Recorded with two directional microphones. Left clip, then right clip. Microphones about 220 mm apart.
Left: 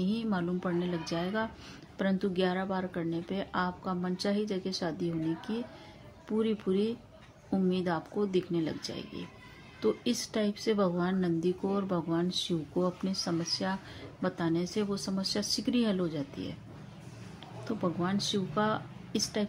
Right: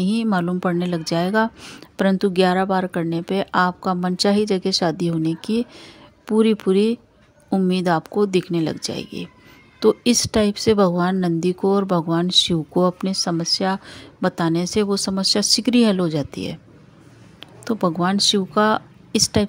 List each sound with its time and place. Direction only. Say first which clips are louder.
0.0 s a woman's voice: right 12 dB; 45° right (ahead or behind)